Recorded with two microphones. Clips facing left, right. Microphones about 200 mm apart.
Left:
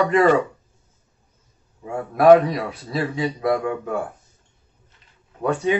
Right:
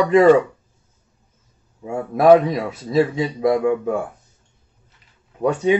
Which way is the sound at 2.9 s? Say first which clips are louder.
Right 9 dB; 15° right (ahead or behind).